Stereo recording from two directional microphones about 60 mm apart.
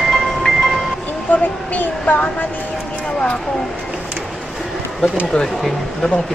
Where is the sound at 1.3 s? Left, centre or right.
Left.